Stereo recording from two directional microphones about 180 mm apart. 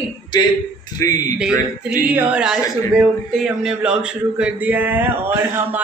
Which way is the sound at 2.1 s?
5° right (ahead or behind).